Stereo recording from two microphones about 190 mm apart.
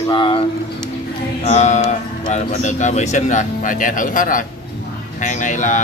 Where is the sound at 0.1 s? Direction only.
25° left (ahead or behind).